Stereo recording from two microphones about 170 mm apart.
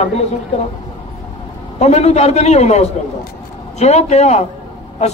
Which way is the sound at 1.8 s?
40° left (ahead or behind).